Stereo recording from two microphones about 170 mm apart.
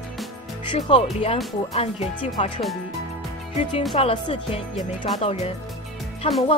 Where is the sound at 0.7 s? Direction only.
35° left (ahead or behind).